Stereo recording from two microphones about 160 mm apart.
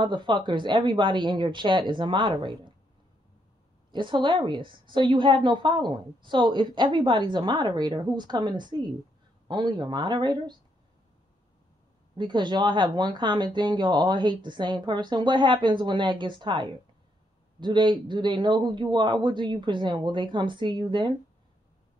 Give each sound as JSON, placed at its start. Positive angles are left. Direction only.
{"t": 0.0, "sound": "a woman's voice", "side_deg": -30}
{"t": 3.9, "sound": "a woman's voice", "side_deg": -30}
{"t": 12.2, "sound": "a woman's voice", "side_deg": -30}